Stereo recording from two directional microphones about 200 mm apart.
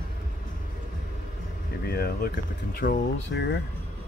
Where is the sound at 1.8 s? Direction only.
50° left (ahead or behind).